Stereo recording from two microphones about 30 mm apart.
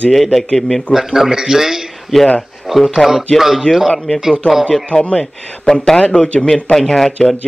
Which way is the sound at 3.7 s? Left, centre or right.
Left.